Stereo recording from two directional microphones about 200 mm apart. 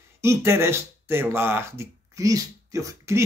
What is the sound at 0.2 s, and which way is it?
Speech, 15° right (ahead or behind).